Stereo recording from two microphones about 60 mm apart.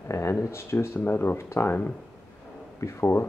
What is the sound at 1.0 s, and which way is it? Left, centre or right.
Speech, left.